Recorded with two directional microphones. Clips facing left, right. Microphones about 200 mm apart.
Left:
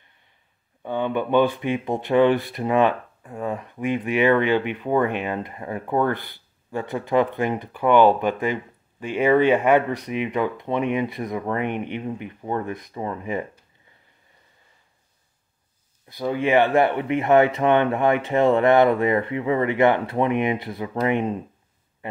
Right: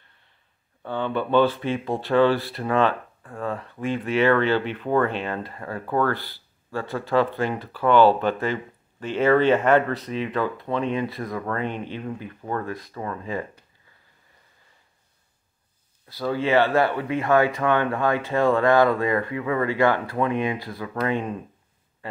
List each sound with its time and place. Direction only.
0.8 s speech: 15° left (ahead or behind)
16.1 s speech: 20° left (ahead or behind)